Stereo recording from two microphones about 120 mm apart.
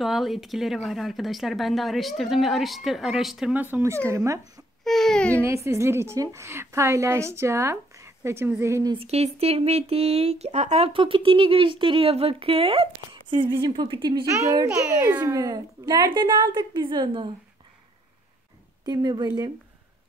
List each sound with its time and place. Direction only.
0.0 s speech: centre (ahead or behind)
3.7 s a woman's voice: 20° right (ahead or behind)
4.8 s speech: 5° left (ahead or behind)
5.4 s a woman's voice: 25° right (ahead or behind)
8.9 s speech: 60° right (ahead or behind)
10.9 s speech: 45° right (ahead or behind)
14.2 s a woman's voice: 25° right (ahead or behind)
15.3 s a woman's voice: 30° right (ahead or behind)
18.9 s a woman's voice: 35° right (ahead or behind)